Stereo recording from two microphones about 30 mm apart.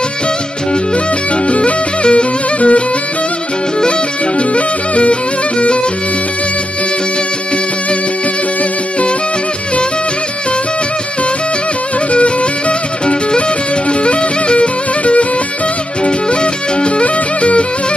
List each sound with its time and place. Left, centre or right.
0.9 s music: left
4.4 s music: left
12.1 s music: left
13.8 s music: left